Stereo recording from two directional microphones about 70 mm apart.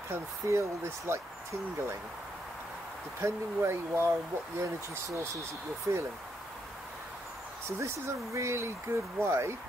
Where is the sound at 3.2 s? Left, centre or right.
Right.